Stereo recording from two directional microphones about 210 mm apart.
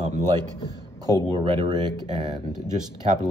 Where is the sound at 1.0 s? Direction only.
20° right (ahead or behind).